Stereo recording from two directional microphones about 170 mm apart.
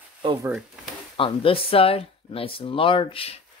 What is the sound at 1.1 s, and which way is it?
Speech, 30° left (ahead or behind).